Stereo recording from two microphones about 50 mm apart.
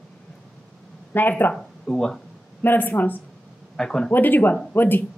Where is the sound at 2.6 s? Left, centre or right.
Left.